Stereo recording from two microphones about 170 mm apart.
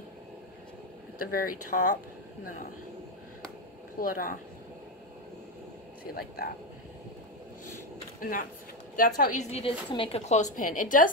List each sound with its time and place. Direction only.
1.3 s a woman's voice: 55° left (ahead or behind)
4.0 s a woman's voice: 55° left (ahead or behind)
6.1 s a woman's voice: 65° left (ahead or behind)
8.2 s a woman's voice: 55° left (ahead or behind)
9.5 s a woman's voice: 35° left (ahead or behind); by 11.1 s 50° left (ahead or behind)